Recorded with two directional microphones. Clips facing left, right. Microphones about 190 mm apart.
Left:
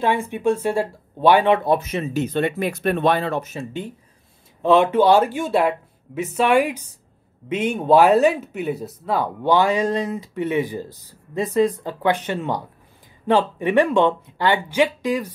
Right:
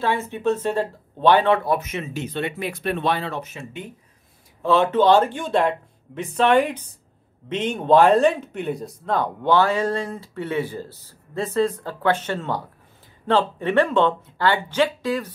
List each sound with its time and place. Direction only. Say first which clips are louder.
0.0 s speech: left 2 dB; 15° left (ahead or behind); by 3.9 s 35° left (ahead or behind)
4.6 s speech: left 3 dB; 15° left (ahead or behind)